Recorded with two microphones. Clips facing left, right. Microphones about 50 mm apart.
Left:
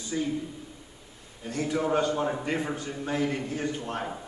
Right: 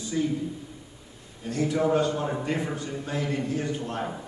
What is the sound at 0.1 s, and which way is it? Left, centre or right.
Speech, centre.